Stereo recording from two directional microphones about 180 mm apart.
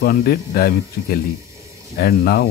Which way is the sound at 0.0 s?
55° left (ahead or behind).